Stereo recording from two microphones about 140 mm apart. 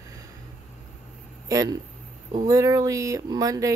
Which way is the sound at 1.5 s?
25° right (ahead or behind).